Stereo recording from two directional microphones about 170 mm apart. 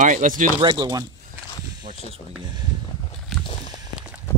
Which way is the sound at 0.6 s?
25° right (ahead or behind).